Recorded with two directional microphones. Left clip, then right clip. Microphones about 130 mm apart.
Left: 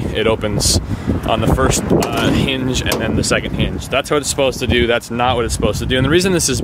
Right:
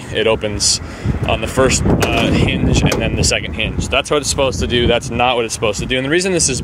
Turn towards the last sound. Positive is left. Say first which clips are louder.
# left 1 dB
turn(degrees=40)  # may be behind; listen again after turning